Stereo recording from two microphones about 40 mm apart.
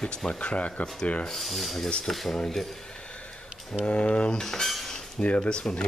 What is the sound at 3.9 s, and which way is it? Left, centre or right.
Speech, left.